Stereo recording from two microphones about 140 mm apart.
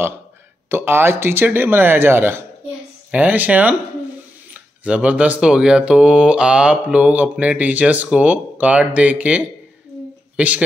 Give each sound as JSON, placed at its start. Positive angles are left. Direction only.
{"t": 0.7, "sound": "speech", "side_deg": -15}
{"t": 4.8, "sound": "speech", "side_deg": -10}